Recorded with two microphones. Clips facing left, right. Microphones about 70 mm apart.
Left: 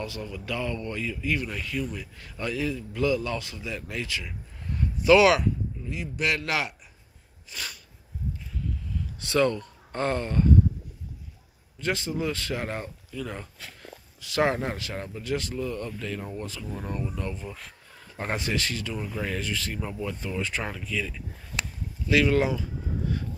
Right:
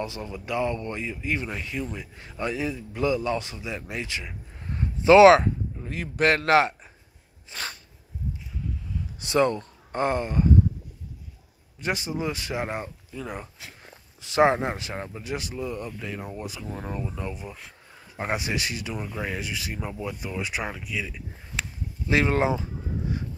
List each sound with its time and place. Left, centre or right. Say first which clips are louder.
0.0 s speech: right 2 dB; right
7.5 s sneeze: right 3 dB; right
9.2 s speech: right 1 dB; right
11.8 s speech: even; centre
22.0 s a sound: even; right